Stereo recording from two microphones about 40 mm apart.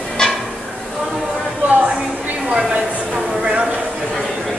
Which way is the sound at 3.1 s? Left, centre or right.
Right.